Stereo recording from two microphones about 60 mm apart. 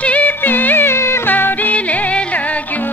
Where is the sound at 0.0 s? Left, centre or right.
Left.